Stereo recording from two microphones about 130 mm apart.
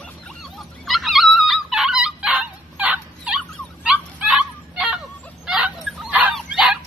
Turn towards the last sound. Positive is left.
turn(degrees=-5)  # may be behind; listen again after turning